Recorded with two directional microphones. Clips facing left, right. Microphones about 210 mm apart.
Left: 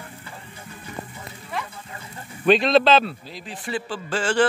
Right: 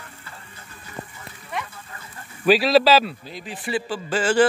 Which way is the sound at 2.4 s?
5° right (ahead or behind).